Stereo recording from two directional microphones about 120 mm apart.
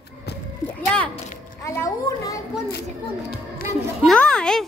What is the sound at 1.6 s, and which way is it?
Speech, 25° left (ahead or behind).